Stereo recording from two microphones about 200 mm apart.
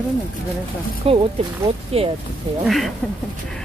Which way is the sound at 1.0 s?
30° right (ahead or behind).